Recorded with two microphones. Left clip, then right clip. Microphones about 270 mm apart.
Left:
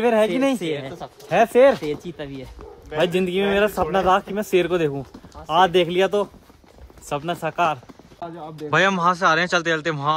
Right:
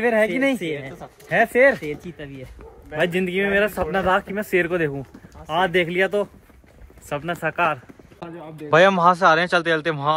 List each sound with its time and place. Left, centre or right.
0.0 s speech: centre
0.7 s speech: left
1.3 s speech: centre
1.8 s speech: left
3.0 s speech: centre
7.4 s speech: centre
8.5 s speech: centre